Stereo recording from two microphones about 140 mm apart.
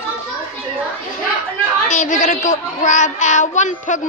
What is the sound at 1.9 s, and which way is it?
Speech, 60° left (ahead or behind).